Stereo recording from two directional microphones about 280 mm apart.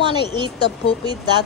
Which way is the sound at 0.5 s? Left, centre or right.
Centre.